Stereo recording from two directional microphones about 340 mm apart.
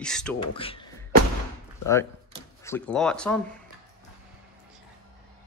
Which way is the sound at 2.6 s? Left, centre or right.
Centre.